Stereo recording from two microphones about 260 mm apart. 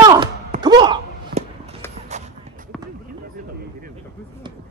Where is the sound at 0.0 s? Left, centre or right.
Centre.